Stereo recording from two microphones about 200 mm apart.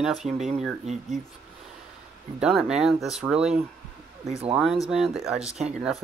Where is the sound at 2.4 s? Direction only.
5° right (ahead or behind).